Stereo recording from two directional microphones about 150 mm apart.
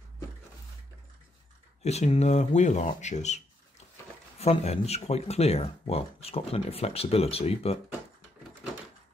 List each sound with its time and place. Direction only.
1.8 s speech: 45° left (ahead or behind)